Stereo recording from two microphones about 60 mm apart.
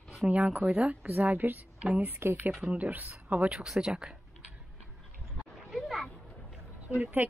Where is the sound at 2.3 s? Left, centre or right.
Right.